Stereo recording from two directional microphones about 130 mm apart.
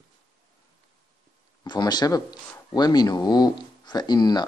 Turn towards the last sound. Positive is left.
turn(degrees=30)  # may be behind; listen again after turning